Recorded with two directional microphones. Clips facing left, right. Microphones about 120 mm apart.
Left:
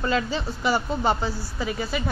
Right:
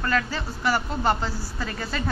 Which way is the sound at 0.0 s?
20° left (ahead or behind).